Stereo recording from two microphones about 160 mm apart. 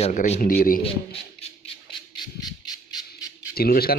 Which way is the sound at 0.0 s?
45° left (ahead or behind).